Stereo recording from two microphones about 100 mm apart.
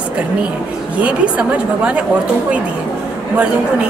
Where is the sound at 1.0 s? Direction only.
15° right (ahead or behind).